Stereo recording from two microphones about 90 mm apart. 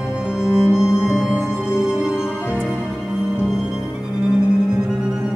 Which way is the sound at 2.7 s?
5° right (ahead or behind).